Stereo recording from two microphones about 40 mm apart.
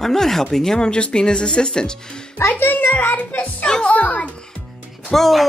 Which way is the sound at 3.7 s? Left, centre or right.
Left.